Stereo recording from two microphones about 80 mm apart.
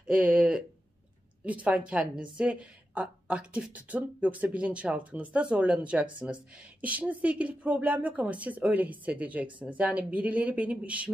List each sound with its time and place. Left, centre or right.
0.0 s a woman's voice: centre